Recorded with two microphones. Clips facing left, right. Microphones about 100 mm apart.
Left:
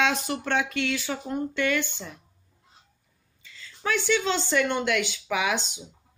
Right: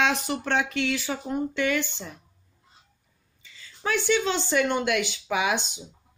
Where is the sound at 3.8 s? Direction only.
15° right (ahead or behind).